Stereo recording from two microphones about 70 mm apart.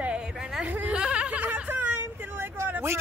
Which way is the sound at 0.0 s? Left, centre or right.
Centre.